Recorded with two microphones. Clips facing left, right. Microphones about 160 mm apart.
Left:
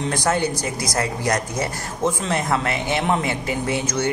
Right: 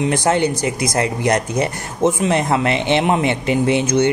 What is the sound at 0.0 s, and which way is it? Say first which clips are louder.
Speech: right 5 dB; 20° right (ahead or behind).